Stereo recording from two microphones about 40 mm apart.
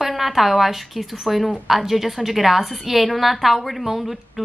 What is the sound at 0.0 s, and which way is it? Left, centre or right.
A woman's voice, centre.